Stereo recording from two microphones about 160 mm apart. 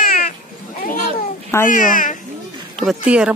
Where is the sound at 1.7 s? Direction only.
55° left (ahead or behind).